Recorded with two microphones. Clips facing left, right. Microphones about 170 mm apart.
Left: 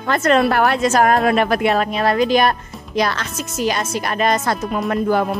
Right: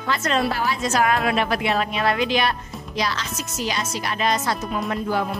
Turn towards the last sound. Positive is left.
turn(degrees=55)  # may be behind; listen again after turning